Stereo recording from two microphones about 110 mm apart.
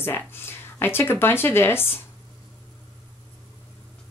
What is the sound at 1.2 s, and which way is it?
Speech, 20° left (ahead or behind).